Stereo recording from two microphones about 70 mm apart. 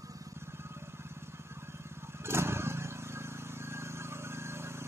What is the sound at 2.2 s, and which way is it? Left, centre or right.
Vehicle, right.